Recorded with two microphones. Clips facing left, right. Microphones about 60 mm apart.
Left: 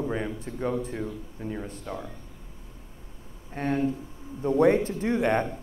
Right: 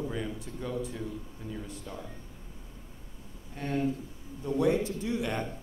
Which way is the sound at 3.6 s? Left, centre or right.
Left.